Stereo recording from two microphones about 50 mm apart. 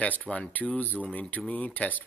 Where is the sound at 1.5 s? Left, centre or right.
Left.